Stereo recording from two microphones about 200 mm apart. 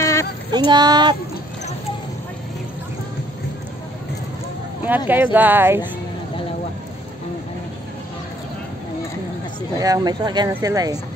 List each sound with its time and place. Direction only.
0.0 s female singing: 15° left (ahead or behind)
0.7 s speech: 20° right (ahead or behind)
4.8 s speech: 10° right (ahead or behind)
9.8 s speech: 20° right (ahead or behind)